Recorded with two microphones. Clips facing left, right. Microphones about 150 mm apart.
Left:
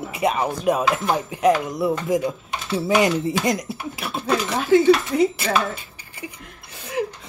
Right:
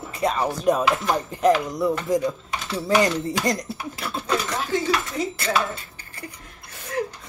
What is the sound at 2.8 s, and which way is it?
Speech, 15° left (ahead or behind).